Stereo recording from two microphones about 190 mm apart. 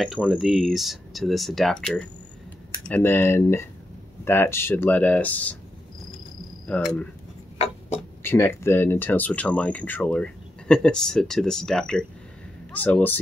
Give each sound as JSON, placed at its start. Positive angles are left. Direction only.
{"t": 0.0, "sound": "speech", "side_deg": -5}
{"t": 6.7, "sound": "speech", "side_deg": 5}
{"t": 7.5, "sound": "a sound", "side_deg": 35}
{"t": 8.2, "sound": "speech", "side_deg": 10}